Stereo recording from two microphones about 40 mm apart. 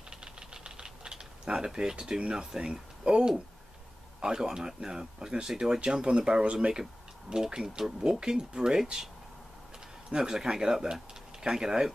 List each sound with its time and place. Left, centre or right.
0.1 s engine knocking: right
1.4 s speech: centre
10.1 s speech: centre